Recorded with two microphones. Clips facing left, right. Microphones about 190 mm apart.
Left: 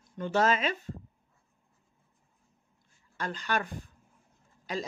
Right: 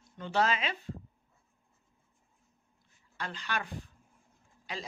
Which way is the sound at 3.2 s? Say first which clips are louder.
Left 5 dB; 45° left (ahead or behind).